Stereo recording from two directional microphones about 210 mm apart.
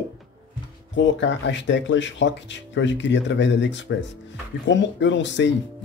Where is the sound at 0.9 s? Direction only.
60° left (ahead or behind).